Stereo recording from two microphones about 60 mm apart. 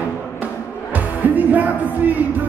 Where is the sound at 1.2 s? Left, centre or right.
Right.